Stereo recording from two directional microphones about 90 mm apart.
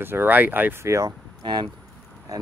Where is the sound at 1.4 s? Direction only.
60° right (ahead or behind).